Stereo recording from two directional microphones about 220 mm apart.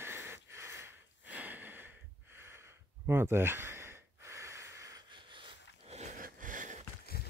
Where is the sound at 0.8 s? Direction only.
5° right (ahead or behind).